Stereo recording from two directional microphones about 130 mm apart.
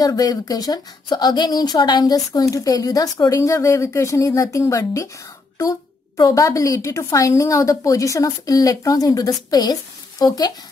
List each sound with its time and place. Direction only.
0.0 s a woman's voice: 30° left (ahead or behind)
6.2 s speech: 25° left (ahead or behind)